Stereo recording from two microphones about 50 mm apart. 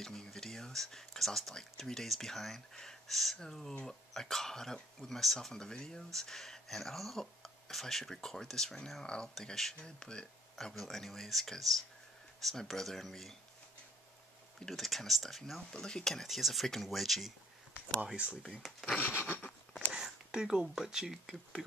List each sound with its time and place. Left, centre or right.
0.0 s whispering: centre
1.5 s speech: centre
5.5 s speech: centre
10.7 s speech: centre
14.6 s speech: centre
15.7 s speech: centre
18.1 s speech: right
18.5 s speech: centre
19.9 s a sound: centre
20.7 s speech: centre